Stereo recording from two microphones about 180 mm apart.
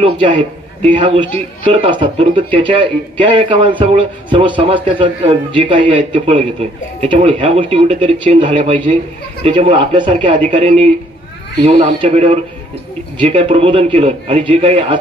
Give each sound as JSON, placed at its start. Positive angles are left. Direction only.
{"t": 0.0, "sound": "a man's voice", "side_deg": -25}
{"t": 11.6, "sound": "a man's voice", "side_deg": -30}